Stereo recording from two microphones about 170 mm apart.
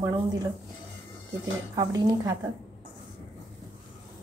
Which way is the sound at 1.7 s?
20° right (ahead or behind).